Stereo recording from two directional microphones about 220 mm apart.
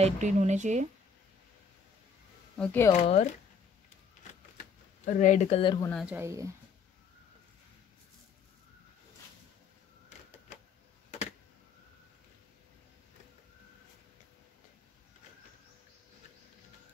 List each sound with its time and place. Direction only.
0.0 s speech: 35° right (ahead or behind)
2.5 s speech: 5° left (ahead or behind)
2.9 s speech: 30° left (ahead or behind)
5.2 s speech: 35° left (ahead or behind)
5.6 s speech: 20° left (ahead or behind)
5.9 s speech: centre (ahead or behind)
6.1 s speech: 15° right (ahead or behind)